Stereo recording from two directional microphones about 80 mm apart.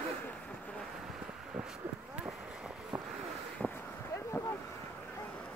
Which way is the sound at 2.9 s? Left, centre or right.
Centre.